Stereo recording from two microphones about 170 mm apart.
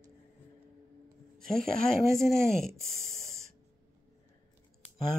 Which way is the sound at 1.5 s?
5° left (ahead or behind).